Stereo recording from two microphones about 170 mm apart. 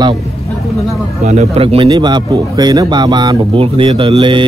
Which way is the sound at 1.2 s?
40° right (ahead or behind).